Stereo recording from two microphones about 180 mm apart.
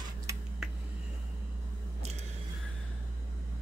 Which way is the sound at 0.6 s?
Centre (ahead or behind).